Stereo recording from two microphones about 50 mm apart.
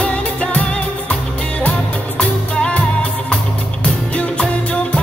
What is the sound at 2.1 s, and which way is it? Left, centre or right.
Music, left.